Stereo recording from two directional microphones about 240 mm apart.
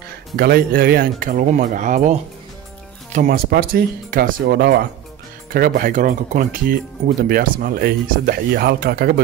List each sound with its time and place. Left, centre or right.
0.4 s speech: right